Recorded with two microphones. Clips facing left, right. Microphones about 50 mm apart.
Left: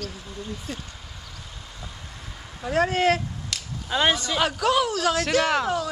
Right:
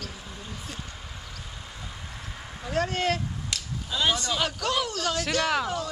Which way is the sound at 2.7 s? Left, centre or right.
Centre.